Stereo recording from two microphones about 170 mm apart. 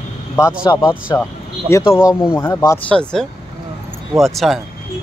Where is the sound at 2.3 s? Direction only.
15° left (ahead or behind).